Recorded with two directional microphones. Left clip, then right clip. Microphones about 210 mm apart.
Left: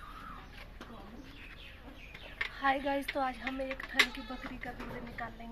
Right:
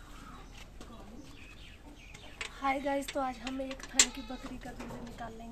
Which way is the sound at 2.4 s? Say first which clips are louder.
Left 2 dB; 15° right (ahead or behind).